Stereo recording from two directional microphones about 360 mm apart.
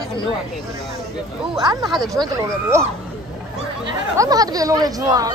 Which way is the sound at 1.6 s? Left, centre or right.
Centre.